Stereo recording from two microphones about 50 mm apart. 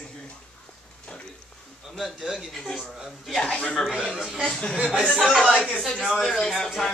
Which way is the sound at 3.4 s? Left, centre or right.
Left.